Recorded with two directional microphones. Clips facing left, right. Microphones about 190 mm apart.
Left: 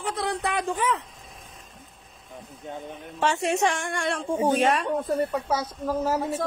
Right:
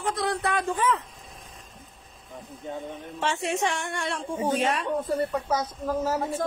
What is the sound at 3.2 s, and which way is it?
Speech, 40° left (ahead or behind).